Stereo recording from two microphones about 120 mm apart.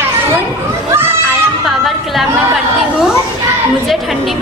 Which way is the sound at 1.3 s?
Centre (ahead or behind).